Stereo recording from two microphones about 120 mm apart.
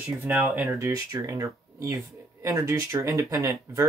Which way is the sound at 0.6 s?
25° right (ahead or behind).